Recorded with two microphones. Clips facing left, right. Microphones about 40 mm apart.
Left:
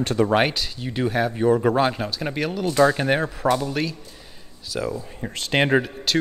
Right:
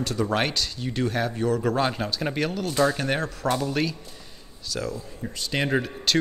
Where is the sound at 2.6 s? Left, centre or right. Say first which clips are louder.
Left 7 dB; left.